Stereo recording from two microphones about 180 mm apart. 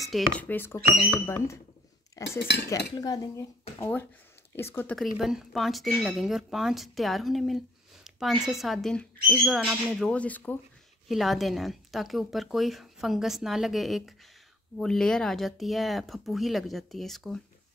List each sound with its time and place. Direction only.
0.0 s speech: 5° left (ahead or behind)
2.3 s cutlery: 70° left (ahead or behind)
3.0 s speech: 20° left (ahead or behind); by 17.4 s centre (ahead or behind)